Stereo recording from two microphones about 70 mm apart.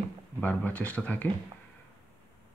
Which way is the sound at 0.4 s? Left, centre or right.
Left.